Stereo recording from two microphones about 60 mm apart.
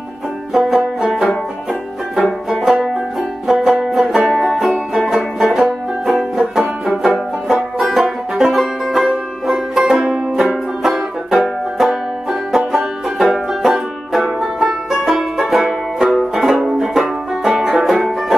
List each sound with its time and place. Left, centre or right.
0.5 s music: centre
6.9 s banjo: centre
7.9 s music: centre
10.5 s banjo: centre
16.6 s music: centre